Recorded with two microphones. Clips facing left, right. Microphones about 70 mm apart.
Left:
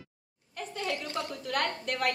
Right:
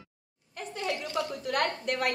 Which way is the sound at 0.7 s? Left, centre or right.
Centre.